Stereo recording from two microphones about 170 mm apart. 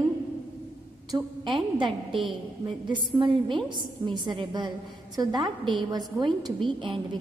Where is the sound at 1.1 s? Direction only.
30° right (ahead or behind).